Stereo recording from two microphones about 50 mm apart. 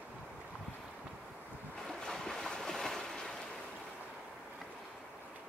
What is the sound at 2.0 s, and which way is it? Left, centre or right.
Boat, centre.